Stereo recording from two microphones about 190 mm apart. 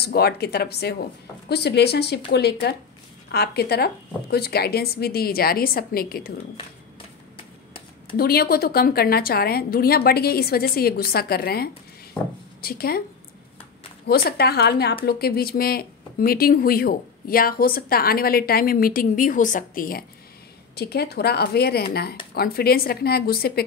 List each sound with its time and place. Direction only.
0.0 s speech: 55° left (ahead or behind)
7.3 s a sound: 30° left (ahead or behind)
8.2 s speech: 55° left (ahead or behind)
14.0 s speech: 55° left (ahead or behind)